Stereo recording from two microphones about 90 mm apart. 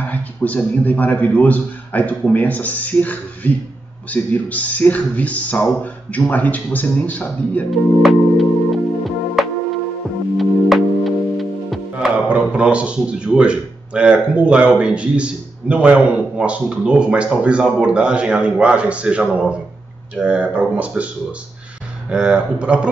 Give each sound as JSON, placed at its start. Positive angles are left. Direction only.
{"t": 0.0, "sound": "a man's voice", "side_deg": 20}
{"t": 7.7, "sound": "speech", "side_deg": 0}
{"t": 9.0, "sound": "music", "side_deg": 0}
{"t": 12.3, "sound": "a man's voice", "side_deg": -10}